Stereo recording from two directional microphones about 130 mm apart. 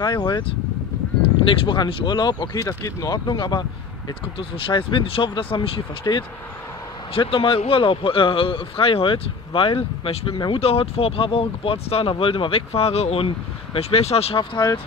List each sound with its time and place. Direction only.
0.0 s speech: 35° left (ahead or behind)
1.4 s speech: 40° left (ahead or behind)